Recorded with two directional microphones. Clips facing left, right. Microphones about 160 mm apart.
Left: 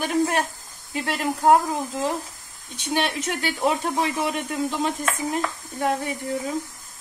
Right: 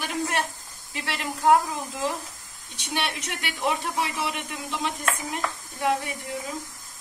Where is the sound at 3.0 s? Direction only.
40° left (ahead or behind).